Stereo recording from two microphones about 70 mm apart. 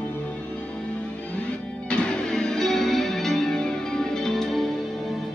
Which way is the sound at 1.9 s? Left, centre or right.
Centre.